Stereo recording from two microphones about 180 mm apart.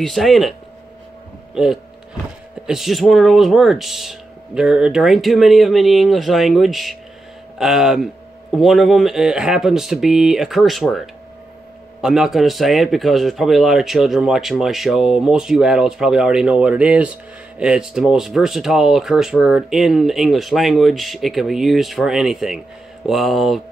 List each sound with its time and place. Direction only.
0.0 s a man's voice: centre (ahead or behind)